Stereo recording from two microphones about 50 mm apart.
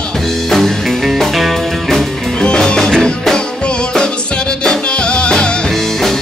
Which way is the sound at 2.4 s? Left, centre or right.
Centre.